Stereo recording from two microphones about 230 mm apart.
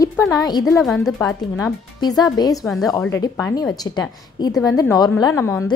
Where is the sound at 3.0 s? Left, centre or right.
Centre.